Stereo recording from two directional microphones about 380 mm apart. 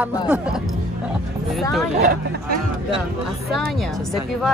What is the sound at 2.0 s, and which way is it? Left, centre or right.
Speech, right.